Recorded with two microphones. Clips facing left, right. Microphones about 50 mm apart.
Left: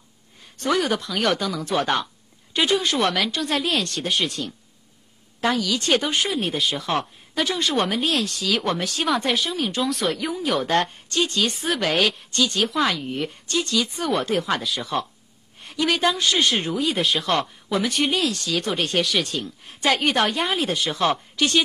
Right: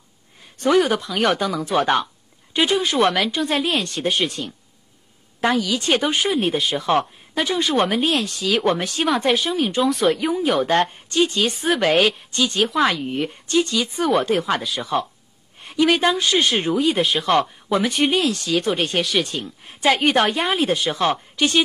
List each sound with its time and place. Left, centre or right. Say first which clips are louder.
0.6 s a woman's voice: right 5 dB; centre
5.4 s a woman's voice: right 2 dB; centre
8.9 s speech: right 3 dB; centre
10.1 s a woman's voice: right 4 dB; centre
12.5 s speech: right 6 dB; centre
13.0 s a woman's voice: right 3 dB; centre
15.6 s a woman's voice: right 4 dB; centre
17.6 s speech: right 3 dB; centre
18.1 s speech: right 4 dB; centre
19.4 s a woman's voice: right 4 dB; centre